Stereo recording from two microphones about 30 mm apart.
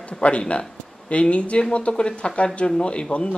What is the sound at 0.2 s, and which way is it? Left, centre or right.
Speech, left.